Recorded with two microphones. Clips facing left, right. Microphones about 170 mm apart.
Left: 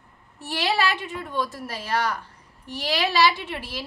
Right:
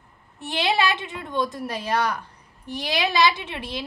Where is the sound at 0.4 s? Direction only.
20° right (ahead or behind).